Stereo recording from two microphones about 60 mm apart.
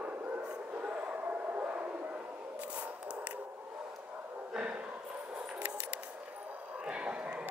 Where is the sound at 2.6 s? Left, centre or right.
Right.